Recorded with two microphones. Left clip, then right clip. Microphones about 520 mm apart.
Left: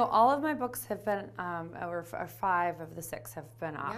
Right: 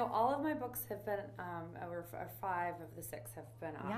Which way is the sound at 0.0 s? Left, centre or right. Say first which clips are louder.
Left 9 dB; left.